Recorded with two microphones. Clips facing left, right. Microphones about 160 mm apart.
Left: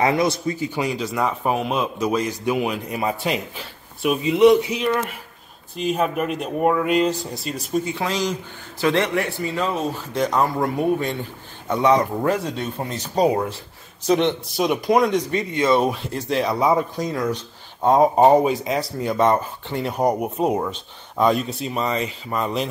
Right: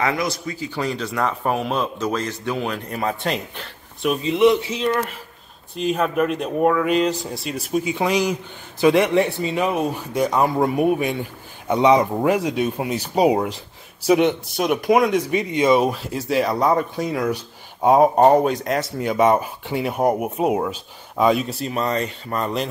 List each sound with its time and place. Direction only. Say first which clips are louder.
0.0 s a man's voice: left 4 dB; 25° left (ahead or behind); by 4.2 s 5° left (ahead or behind)
4.7 s speech: even; 25° right (ahead or behind)
5.8 s speech: right 2 dB; 5° left (ahead or behind)
7.8 s speech: right 4 dB; 15° right (ahead or behind)
15.5 s speech: right 2 dB; 15° right (ahead or behind)
15.8 s speech: right 1 dB; centre (ahead or behind)